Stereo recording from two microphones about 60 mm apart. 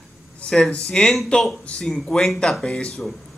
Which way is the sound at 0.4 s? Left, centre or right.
Centre.